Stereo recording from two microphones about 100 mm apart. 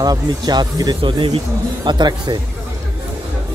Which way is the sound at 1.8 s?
45° right (ahead or behind).